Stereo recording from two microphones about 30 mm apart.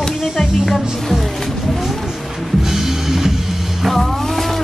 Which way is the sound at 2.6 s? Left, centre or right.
Centre.